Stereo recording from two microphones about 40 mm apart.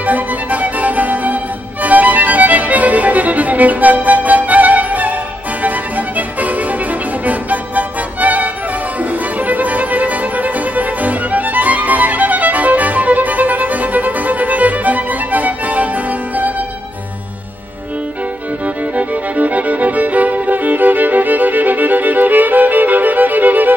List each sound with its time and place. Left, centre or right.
0.0 s music: right
18.9 s music: right